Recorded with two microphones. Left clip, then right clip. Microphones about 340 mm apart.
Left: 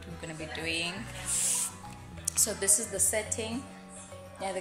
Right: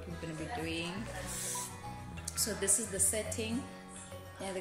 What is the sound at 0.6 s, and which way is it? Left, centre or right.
Speech, centre.